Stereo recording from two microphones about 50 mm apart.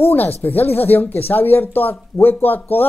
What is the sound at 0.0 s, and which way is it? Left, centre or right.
Speech, left.